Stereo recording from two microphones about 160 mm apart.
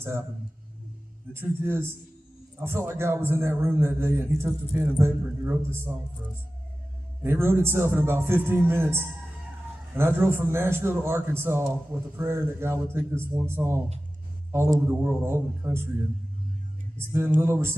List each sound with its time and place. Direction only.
2.6 s a man's voice: 15° right (ahead or behind)
7.2 s a man's voice: 15° right (ahead or behind)
17.1 s a man's voice: 15° right (ahead or behind)